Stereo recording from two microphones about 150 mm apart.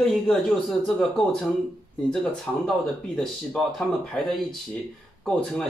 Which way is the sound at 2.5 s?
5° left (ahead or behind).